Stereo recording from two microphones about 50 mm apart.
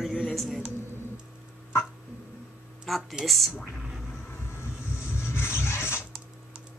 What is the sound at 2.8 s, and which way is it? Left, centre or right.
Speech, centre.